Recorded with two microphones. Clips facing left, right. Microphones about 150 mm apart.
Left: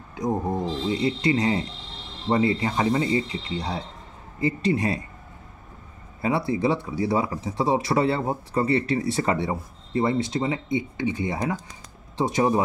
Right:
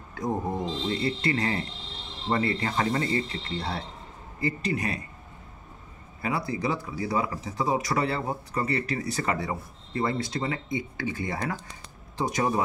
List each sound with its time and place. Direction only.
0.1 s speech: 15° left (ahead or behind)
6.2 s speech: 25° left (ahead or behind)